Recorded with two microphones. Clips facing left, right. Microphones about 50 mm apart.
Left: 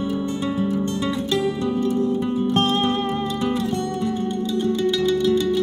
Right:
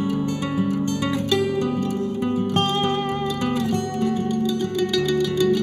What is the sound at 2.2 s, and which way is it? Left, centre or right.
Music, right.